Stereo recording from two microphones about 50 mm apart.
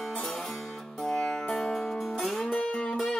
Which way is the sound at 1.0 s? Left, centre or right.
Centre.